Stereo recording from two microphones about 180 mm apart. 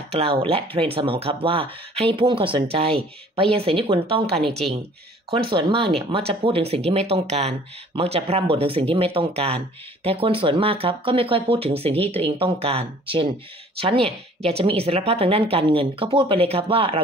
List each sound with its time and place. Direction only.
0.1 s speech: 30° right (ahead or behind)
4.4 s a woman's voice: centre (ahead or behind)
5.5 s speech: 30° right (ahead or behind)